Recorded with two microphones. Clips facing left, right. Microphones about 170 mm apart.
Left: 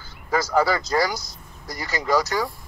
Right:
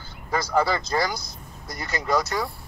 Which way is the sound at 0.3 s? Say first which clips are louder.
Left 2 dB; 5° left (ahead or behind).